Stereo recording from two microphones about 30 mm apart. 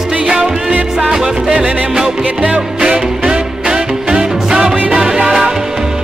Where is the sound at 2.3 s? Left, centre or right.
Right.